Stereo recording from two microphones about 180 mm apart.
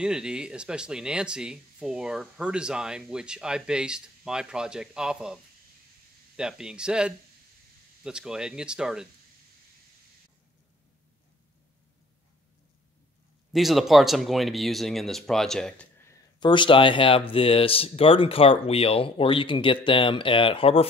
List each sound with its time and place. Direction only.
0.0 s speech: 5° right (ahead or behind)
13.5 s speech: centre (ahead or behind)
16.0 s speech: 20° left (ahead or behind)